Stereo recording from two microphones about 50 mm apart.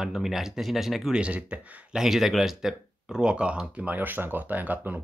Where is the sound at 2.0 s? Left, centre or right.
Centre; by 3.9 s right.